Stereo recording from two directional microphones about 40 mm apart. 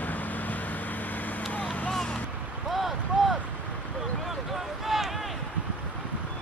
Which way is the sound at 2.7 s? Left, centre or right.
Centre.